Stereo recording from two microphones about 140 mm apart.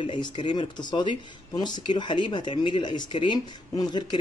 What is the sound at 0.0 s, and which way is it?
Speech, 35° left (ahead or behind).